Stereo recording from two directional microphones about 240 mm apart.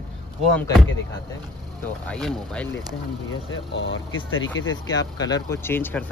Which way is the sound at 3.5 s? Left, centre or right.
Left.